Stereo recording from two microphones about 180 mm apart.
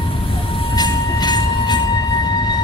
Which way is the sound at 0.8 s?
25° left (ahead or behind).